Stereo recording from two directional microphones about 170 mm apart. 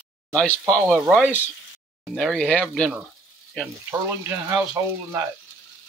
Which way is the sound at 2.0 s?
Centre (ahead or behind).